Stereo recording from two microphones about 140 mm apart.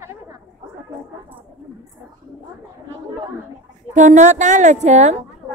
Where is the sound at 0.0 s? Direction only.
20° right (ahead or behind).